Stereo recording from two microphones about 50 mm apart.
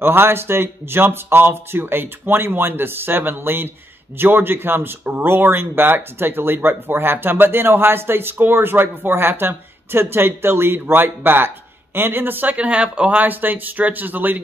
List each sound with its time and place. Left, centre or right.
0.0 s speech: right
12.5 s speech: right